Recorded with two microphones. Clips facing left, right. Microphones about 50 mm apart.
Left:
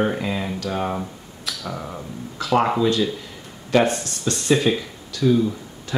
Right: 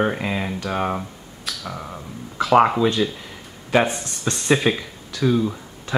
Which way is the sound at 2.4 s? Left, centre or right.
Right.